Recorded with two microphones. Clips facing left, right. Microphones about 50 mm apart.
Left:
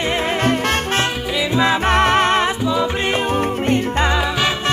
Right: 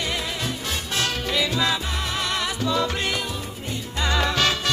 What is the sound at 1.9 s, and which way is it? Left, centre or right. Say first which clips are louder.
Music: left 13 dB; left.